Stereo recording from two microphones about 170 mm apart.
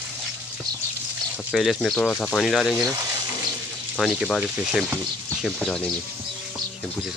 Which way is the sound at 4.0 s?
Centre (ahead or behind).